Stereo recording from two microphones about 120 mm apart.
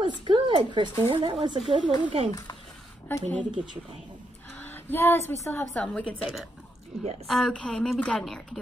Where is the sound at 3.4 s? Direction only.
40° right (ahead or behind).